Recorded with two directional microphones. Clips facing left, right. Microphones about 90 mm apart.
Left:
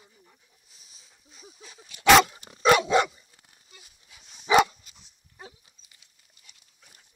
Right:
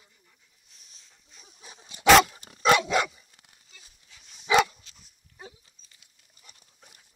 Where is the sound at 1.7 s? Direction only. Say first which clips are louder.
Right 1 dB; 25° right (ahead or behind).